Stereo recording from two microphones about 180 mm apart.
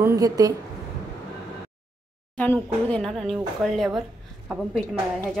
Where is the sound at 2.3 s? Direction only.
10° left (ahead or behind).